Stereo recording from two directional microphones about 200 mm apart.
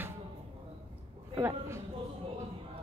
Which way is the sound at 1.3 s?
15° right (ahead or behind).